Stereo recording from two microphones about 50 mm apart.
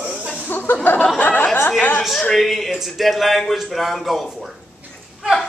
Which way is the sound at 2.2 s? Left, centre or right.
Centre.